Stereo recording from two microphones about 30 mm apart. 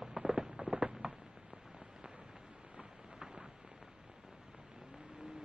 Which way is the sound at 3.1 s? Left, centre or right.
Right.